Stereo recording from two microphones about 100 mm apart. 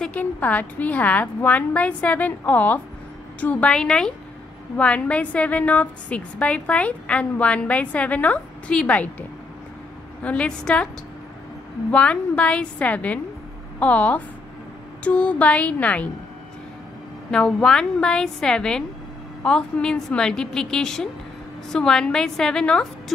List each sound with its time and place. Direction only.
0.1 s a woman's voice: 15° left (ahead or behind)
10.2 s a woman's voice: 10° left (ahead or behind)
11.9 s a woman's voice: 10° left (ahead or behind)
17.3 s a woman's voice: 10° left (ahead or behind)